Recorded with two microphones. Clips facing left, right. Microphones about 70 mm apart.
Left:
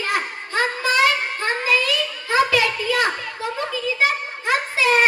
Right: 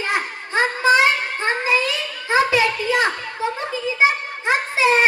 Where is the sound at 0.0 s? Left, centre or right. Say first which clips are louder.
Right 1 dB; right.